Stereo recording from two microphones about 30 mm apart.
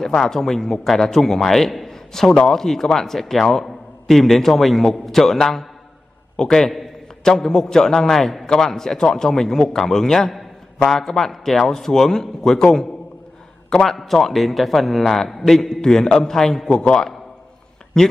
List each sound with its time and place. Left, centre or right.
0.0 s a man's voice: centre
6.3 s a man's voice: left
13.8 s a man's voice: centre